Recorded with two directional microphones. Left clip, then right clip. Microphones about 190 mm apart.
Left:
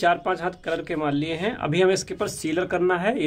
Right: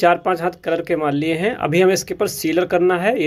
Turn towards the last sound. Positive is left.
turn(degrees=-10)  # may be behind; listen again after turning